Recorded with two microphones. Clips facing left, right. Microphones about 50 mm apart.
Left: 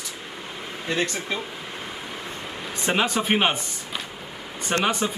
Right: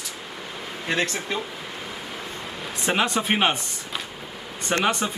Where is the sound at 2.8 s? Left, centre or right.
Centre.